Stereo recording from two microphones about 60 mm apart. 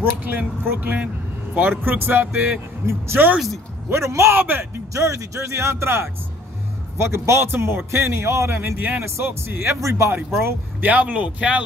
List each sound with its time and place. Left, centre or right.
0.0 s speech: right
2.9 s a man's voice: right
4.4 s speech: right
4.9 s a man's voice: right
8.5 s speech: right
9.8 s speech: right
10.8 s speech: right